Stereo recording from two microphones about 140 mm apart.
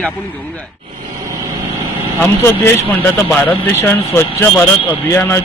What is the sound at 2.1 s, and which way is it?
A man's voice, 15° left (ahead or behind).